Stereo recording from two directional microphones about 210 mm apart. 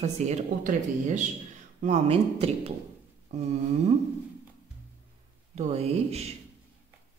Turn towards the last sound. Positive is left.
turn(degrees=-30)  # may be behind; listen again after turning